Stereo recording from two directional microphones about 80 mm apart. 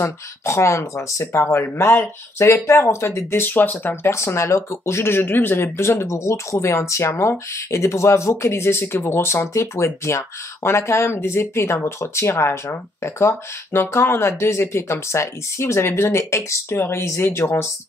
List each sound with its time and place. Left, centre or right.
0.0 s speech: left